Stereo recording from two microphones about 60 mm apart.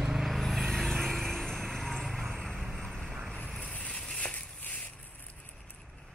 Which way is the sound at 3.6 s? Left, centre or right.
Left.